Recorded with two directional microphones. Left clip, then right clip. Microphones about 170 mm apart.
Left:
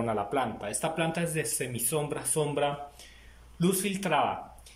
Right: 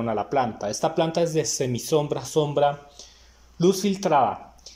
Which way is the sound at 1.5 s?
30° right (ahead or behind).